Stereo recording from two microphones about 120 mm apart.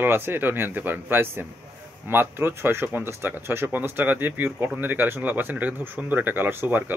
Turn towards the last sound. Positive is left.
turn(degrees=-15)  # may be behind; listen again after turning